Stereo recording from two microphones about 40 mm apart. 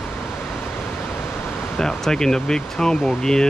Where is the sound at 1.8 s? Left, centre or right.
Centre.